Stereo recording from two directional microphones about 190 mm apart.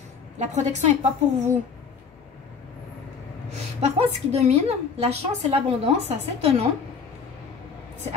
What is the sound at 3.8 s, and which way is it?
A woman's voice, 35° right (ahead or behind).